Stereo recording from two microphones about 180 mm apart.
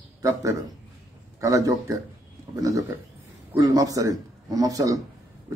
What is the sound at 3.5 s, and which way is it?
Speech, 20° right (ahead or behind).